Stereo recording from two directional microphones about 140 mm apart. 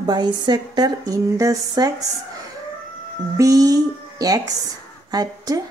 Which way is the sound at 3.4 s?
25° right (ahead or behind).